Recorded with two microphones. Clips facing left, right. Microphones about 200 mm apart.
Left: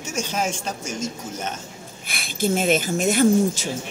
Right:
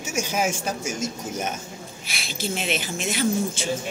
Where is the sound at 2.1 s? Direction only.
45° left (ahead or behind).